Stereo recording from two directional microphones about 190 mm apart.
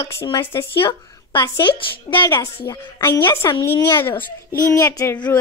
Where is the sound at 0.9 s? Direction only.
15° left (ahead or behind).